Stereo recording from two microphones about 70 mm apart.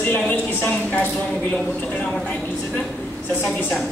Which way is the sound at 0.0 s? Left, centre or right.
Left.